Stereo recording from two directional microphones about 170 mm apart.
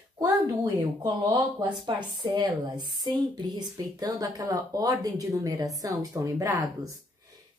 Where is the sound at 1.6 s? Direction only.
25° right (ahead or behind).